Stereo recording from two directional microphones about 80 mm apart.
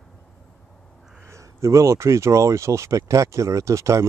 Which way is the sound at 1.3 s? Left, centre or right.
Right.